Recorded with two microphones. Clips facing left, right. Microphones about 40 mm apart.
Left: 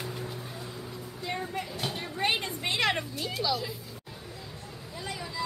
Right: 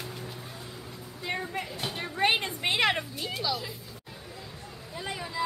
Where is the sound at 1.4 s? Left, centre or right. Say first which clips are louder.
Even; centre.